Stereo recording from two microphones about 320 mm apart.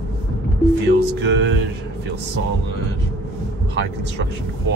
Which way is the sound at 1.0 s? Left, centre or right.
Right.